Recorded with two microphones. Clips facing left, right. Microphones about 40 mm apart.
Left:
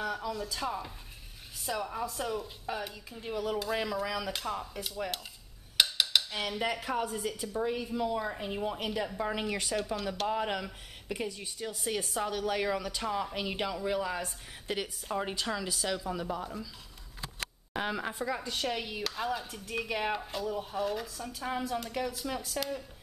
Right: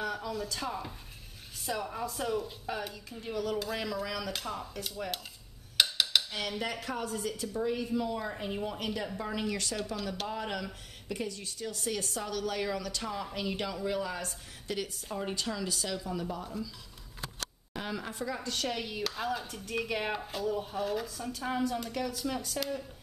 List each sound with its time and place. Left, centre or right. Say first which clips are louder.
0.0 s speech: even; centre
10.2 s speech: left 4 dB; centre
14.7 s speech: left 1 dB; left
15.3 s speech: left 1 dB; centre
17.7 s speech: left 3 dB; left; by 22.8 s centre